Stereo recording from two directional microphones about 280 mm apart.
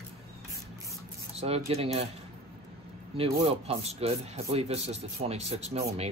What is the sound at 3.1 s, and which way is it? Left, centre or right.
Speech, right.